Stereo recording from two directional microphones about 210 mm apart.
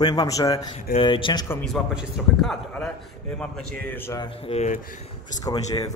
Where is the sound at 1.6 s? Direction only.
Centre (ahead or behind); by 5.0 s 35° left (ahead or behind).